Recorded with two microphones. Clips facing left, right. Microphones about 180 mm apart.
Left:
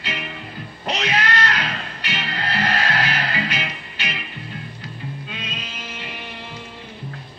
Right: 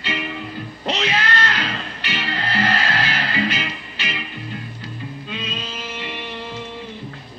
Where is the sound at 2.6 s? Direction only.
30° right (ahead or behind).